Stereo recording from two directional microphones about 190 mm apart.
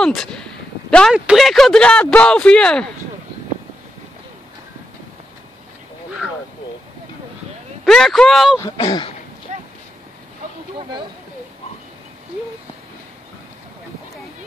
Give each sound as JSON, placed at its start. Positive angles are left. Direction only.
{"t": 0.0, "sound": "speech", "side_deg": 0}
{"t": 7.8, "sound": "speech", "side_deg": 0}
{"t": 8.5, "sound": "speech", "side_deg": 20}
{"t": 9.5, "sound": "a sound", "side_deg": -35}
{"t": 10.8, "sound": "speech", "side_deg": -25}